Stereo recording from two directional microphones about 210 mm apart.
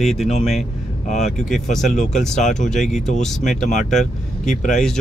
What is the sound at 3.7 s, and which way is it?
Speech, 35° left (ahead or behind).